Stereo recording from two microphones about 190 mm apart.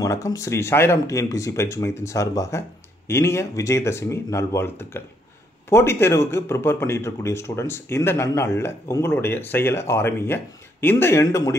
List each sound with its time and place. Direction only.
0.0 s speech: 15° left (ahead or behind)